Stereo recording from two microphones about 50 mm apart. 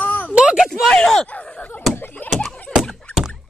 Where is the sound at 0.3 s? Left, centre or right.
Centre.